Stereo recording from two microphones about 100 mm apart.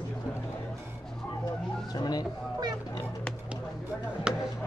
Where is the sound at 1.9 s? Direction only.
40° left (ahead or behind).